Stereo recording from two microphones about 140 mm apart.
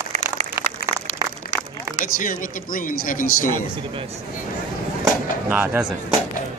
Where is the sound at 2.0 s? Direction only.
75° left (ahead or behind).